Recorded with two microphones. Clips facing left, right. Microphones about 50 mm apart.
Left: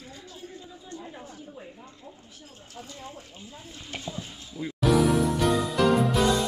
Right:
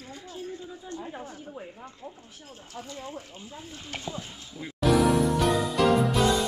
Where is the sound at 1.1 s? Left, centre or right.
Right.